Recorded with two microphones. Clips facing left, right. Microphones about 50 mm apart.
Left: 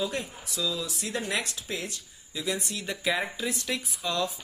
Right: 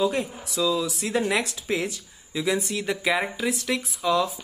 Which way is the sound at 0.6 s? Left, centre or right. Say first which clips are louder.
Right 8 dB; right.